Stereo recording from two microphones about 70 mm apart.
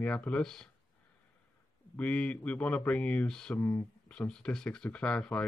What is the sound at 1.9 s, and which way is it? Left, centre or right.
Speech, centre.